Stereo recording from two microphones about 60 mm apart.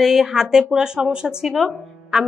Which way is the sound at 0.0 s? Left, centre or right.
Centre.